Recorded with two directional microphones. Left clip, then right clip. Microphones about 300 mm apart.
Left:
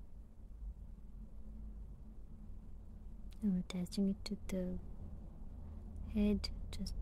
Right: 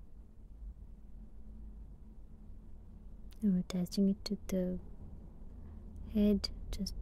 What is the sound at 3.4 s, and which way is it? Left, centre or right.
A woman's voice, centre.